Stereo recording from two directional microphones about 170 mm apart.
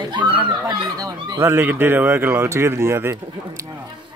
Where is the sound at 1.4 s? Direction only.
15° right (ahead or behind).